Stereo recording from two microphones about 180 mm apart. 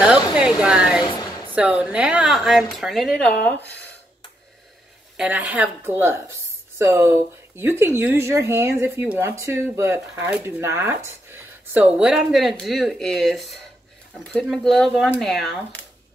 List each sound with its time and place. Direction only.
0.0 s speech: 5° right (ahead or behind)
1.0 s a sound: 20° left (ahead or behind)
1.5 s speech: 5° right (ahead or behind)
5.1 s speech: 5° right (ahead or behind)